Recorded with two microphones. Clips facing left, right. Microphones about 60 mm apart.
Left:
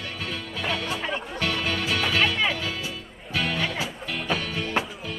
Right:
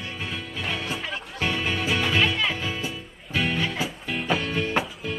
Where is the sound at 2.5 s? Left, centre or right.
Right.